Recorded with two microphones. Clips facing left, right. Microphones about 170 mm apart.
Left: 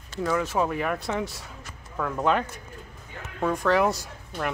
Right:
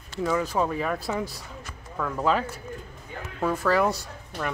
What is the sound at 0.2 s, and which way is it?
Speech, centre (ahead or behind).